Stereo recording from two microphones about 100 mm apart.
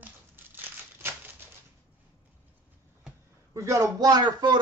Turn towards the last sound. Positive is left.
turn(degrees=-45)  # may be behind; listen again after turning